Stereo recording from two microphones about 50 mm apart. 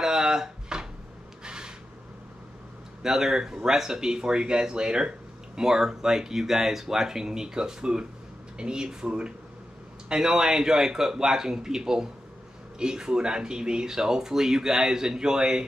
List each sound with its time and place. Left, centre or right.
0.0 s drawer open or close: centre
1.4 s a sound: centre
3.0 s speech: centre